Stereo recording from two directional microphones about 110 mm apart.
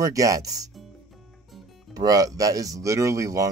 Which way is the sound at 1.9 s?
35° right (ahead or behind).